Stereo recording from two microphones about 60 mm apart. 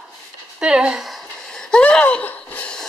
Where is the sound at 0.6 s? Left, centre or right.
Centre.